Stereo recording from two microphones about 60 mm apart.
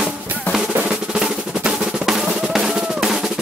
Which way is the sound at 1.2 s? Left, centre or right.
Centre.